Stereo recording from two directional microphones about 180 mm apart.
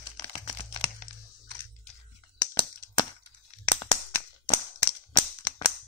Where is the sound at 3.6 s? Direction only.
25° left (ahead or behind).